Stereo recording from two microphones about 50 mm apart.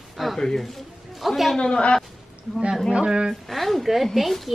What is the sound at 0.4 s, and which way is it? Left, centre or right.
A man's voice, centre.